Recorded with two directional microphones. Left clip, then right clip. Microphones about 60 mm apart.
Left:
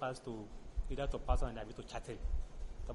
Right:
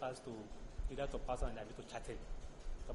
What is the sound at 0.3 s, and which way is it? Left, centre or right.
A man's voice, centre.